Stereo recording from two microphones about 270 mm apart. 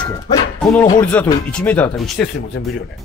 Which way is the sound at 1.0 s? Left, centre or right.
Centre.